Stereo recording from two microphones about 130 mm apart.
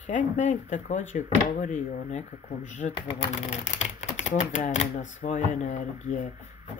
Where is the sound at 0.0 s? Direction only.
70° left (ahead or behind).